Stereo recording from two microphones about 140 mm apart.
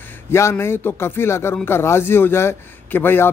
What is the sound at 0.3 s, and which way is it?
Speech, 20° left (ahead or behind).